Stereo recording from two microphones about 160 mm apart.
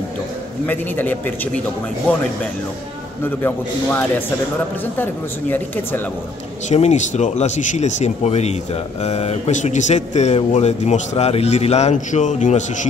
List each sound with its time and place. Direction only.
0.7 s speech: 10° left (ahead or behind)
3.3 s speech: 10° left (ahead or behind)
6.7 s speech: 45° left (ahead or behind)